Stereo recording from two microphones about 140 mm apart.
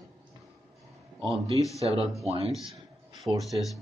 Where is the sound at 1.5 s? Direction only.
25° left (ahead or behind).